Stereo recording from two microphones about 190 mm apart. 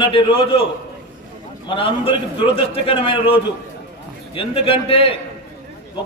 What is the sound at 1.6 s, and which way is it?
A man's voice, 30° left (ahead or behind).